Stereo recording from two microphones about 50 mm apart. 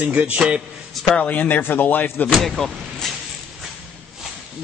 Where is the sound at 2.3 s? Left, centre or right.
Centre.